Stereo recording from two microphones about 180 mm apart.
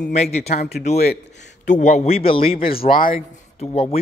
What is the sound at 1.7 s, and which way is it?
Speech, 40° left (ahead or behind).